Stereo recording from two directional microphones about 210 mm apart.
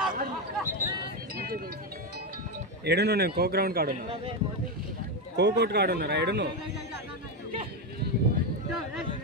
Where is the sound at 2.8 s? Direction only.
50° right (ahead or behind).